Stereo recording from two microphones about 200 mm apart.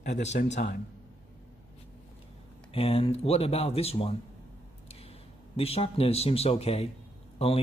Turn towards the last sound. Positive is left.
turn(degrees=30)  # may be behind; listen again after turning